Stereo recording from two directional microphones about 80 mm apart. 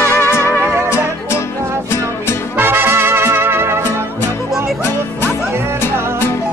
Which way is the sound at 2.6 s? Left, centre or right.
Right.